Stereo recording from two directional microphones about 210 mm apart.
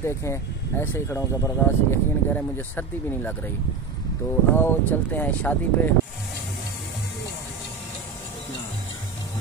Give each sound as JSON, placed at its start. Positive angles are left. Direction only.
{"t": 0.0, "sound": "speech", "side_deg": 15}
{"t": 4.6, "sound": "speech", "side_deg": 10}